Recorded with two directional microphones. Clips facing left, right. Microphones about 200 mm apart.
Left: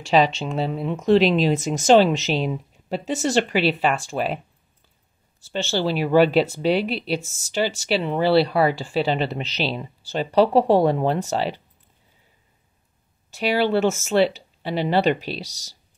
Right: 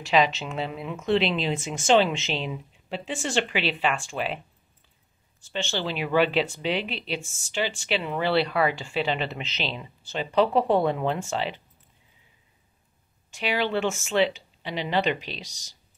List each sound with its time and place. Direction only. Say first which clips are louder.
0.1 s speech: left 4 dB; 30° left (ahead or behind)
5.5 s speech: left 6 dB; 40° left (ahead or behind)
13.3 s speech: left 6 dB; 40° left (ahead or behind)